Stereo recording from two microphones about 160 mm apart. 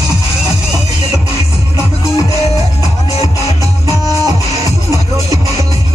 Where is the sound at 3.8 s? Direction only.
20° right (ahead or behind).